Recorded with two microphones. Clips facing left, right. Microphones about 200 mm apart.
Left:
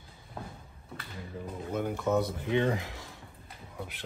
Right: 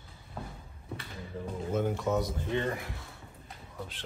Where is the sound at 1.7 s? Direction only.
Centre (ahead or behind).